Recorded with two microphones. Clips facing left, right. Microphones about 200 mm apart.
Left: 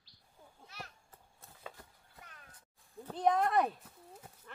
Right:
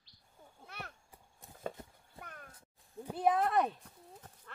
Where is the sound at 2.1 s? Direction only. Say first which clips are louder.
Right 7 dB; 55° right (ahead or behind).